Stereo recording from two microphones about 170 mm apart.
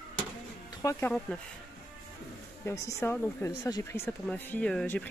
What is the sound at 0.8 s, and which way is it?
Speech, 15° left (ahead or behind).